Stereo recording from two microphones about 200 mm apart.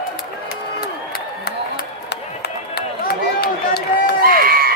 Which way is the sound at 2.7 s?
50° left (ahead or behind).